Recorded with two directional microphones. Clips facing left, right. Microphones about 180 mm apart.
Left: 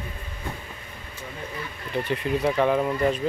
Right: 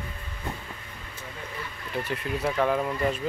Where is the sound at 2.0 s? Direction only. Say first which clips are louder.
Left 5 dB; 5° right (ahead or behind).